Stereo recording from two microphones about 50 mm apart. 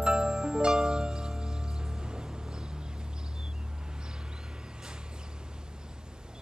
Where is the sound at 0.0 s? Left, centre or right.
Centre.